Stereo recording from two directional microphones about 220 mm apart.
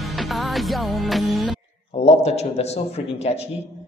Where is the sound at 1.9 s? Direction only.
30° left (ahead or behind).